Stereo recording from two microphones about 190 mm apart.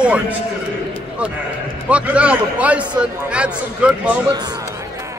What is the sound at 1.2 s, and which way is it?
Speech, 5° right (ahead or behind).